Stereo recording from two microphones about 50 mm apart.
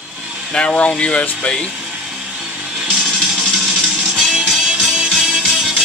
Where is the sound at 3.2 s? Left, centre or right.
Centre.